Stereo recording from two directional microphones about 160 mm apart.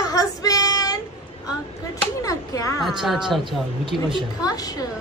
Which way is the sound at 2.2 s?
20° left (ahead or behind).